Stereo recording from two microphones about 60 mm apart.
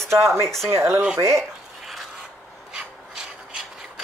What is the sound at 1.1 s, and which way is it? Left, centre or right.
Speech, right.